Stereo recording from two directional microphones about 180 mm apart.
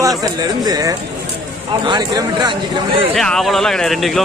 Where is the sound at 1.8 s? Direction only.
25° right (ahead or behind).